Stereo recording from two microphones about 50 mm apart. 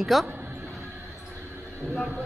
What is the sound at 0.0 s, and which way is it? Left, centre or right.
Speech, centre.